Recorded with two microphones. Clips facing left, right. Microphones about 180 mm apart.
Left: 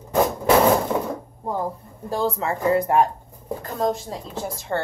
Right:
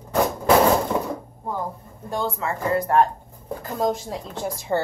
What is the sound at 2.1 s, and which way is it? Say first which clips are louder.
Speech: left 3 dB; 35° left (ahead or behind).